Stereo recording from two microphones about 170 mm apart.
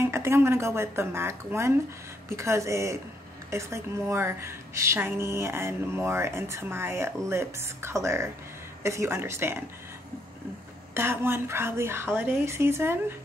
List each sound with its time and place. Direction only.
0.0 s a woman's voice: 15° right (ahead or behind)
11.0 s a woman's voice: 15° right (ahead or behind)